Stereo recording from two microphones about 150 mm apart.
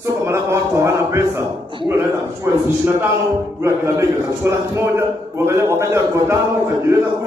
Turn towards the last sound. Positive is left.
turn(degrees=-20)  # may be behind; listen again after turning